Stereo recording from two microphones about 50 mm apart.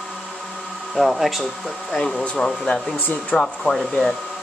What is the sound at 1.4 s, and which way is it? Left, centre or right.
Speech, centre.